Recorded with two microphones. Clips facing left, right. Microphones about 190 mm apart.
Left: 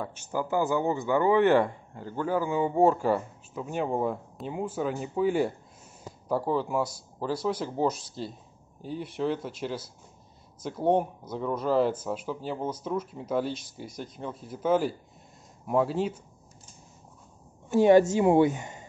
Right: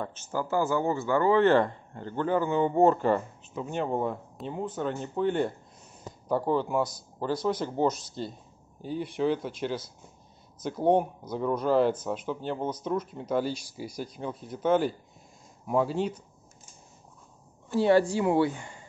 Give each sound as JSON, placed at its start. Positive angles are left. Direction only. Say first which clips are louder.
{"t": 0.0, "sound": "speech", "louder": "left 1 dB", "side_deg": 15}
{"t": 17.6, "sound": "a woman's voice", "louder": "left 3 dB", "side_deg": 15}